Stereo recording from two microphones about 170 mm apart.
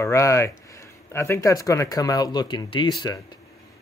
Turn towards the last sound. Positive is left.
turn(degrees=25)  # may be behind; listen again after turning